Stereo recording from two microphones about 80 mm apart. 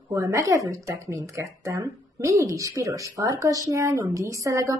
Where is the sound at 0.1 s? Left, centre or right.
Right.